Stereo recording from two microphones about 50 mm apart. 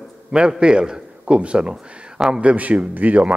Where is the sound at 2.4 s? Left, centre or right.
Right.